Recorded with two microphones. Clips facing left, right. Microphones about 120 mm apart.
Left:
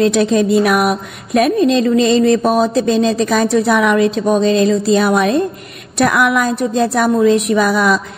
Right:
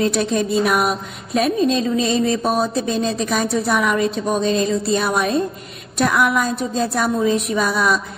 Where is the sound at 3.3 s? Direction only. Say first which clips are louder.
Left 5 dB; 90° left.